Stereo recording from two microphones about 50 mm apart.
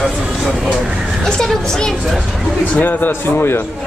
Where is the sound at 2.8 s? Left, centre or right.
Left.